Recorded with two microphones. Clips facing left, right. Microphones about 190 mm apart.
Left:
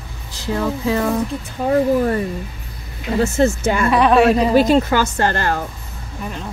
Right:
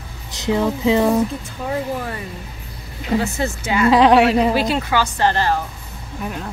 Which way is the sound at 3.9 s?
85° right.